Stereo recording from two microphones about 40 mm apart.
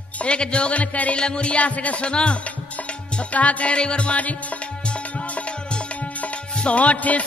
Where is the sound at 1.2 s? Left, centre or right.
Left.